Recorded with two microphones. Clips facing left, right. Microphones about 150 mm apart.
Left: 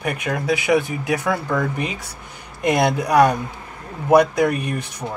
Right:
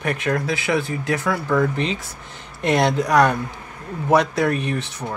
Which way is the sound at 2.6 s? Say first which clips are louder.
Even; 10° left (ahead or behind).